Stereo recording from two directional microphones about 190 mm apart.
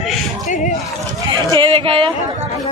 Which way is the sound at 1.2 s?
25° right (ahead or behind).